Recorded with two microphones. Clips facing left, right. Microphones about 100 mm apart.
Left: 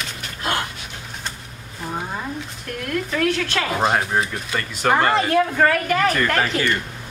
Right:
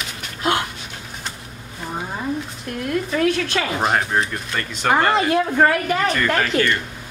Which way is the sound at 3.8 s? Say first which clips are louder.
Left 1 dB; 5° left (ahead or behind).